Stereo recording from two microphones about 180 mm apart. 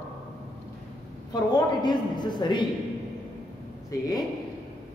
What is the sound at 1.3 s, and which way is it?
A man's voice, 20° left (ahead or behind).